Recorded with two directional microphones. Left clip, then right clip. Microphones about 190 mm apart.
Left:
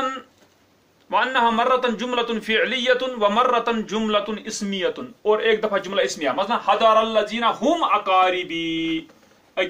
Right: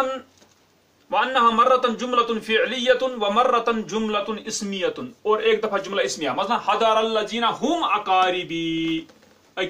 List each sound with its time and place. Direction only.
1.1 s a man's voice: 20° left (ahead or behind)
8.5 s mantra: 40° right (ahead or behind)